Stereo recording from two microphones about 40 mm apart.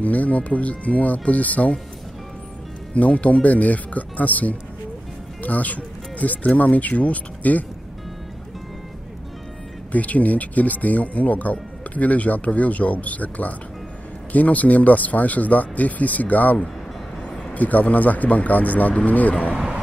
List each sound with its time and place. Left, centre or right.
0.0 s speech: left
2.9 s speech: left
9.9 s speech: left
17.6 s speech: left